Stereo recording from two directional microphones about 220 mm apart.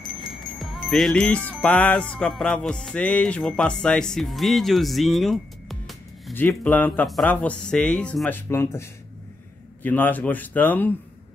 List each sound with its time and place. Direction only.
0.6 s music: centre (ahead or behind)
9.8 s speech: 10° left (ahead or behind)